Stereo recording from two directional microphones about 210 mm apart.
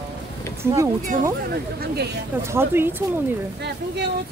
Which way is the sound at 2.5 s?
10° right (ahead or behind).